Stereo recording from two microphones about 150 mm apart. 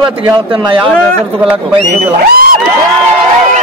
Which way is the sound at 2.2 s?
90° right.